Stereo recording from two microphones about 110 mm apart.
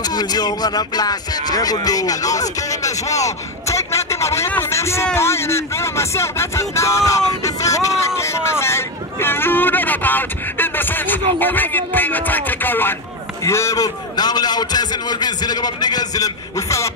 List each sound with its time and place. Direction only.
0.0 s music: 35° left (ahead or behind)
4.5 s a man's voice: 20° left (ahead or behind)